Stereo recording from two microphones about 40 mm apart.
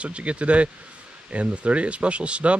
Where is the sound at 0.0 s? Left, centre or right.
Right.